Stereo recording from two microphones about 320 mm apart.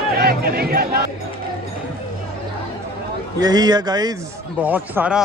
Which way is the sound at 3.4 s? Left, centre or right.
Centre.